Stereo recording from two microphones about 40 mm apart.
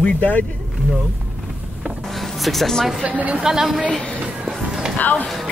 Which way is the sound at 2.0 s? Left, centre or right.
Centre.